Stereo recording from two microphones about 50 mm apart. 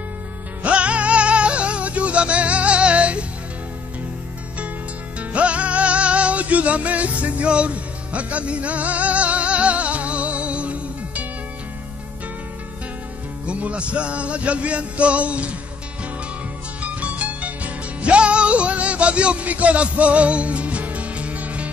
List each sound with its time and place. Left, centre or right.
0.6 s music: right
5.3 s music: right
13.5 s speech: right
16.8 s music: right